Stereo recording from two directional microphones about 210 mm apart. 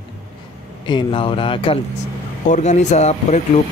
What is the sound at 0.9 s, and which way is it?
Speech, 25° left (ahead or behind).